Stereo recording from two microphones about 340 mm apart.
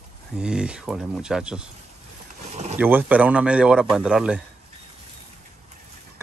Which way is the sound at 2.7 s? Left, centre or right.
Centre.